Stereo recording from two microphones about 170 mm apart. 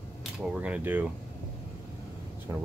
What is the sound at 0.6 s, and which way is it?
Speech, 10° right (ahead or behind).